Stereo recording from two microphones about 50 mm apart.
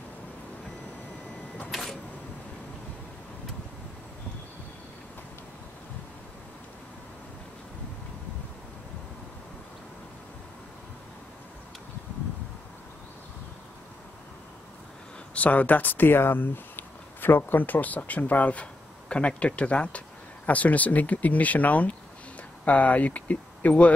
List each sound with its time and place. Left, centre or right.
1.7 s printer: centre
15.3 s speech: left